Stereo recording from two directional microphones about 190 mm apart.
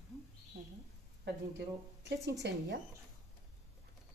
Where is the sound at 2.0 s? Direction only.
65° right (ahead or behind).